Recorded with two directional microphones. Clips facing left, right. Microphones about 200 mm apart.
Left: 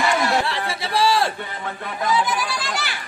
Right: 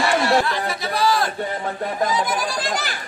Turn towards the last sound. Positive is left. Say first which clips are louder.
# right 3 dB
turn(degrees=-45)  # may be behind; listen again after turning